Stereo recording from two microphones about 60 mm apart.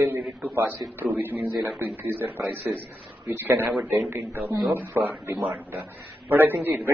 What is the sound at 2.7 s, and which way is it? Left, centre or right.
Speech, centre.